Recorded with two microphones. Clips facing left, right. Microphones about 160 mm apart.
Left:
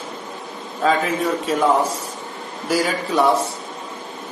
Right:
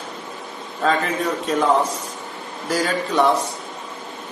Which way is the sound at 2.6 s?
5° left (ahead or behind).